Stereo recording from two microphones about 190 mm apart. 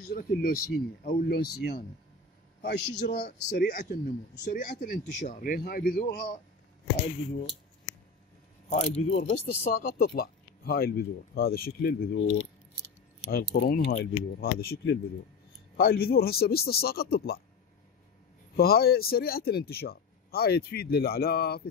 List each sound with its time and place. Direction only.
0.1 s a man's voice: 55° left (ahead or behind)
3.6 s speech: 45° left (ahead or behind)
8.6 s speech: 35° left (ahead or behind)
9.2 s speech: 55° left (ahead or behind)
13.3 s a man's voice: 55° left (ahead or behind)
18.6 s a man's voice: 55° left (ahead or behind)